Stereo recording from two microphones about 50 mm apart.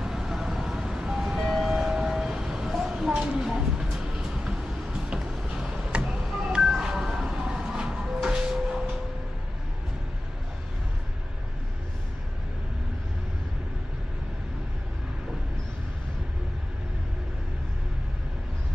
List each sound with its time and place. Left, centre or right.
0.0 s vehicle: centre
6.0 s music: centre